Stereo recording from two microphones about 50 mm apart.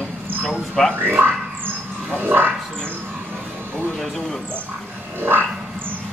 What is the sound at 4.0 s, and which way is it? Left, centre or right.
Speech, centre.